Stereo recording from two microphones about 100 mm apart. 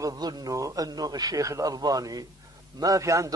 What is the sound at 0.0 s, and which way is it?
A man's voice, 40° right (ahead or behind).